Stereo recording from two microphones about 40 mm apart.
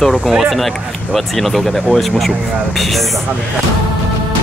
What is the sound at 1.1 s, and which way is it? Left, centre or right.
Speech, centre.